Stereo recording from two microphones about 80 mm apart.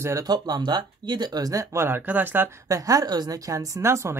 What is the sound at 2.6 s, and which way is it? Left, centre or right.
Speech, right.